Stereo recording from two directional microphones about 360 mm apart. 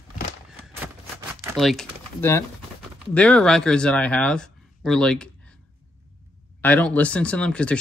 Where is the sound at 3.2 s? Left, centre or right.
Centre.